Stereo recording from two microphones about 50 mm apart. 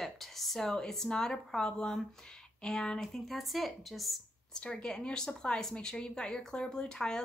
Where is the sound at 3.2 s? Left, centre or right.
Centre.